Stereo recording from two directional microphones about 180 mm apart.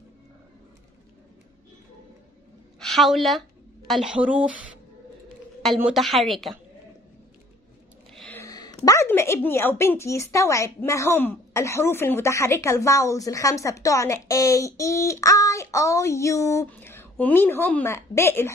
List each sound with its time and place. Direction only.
2.8 s a woman's voice: centre (ahead or behind)
5.8 s a woman's voice: 5° right (ahead or behind)
8.1 s a sound: 5° left (ahead or behind)
8.4 s a woman's voice: 20° left (ahead or behind)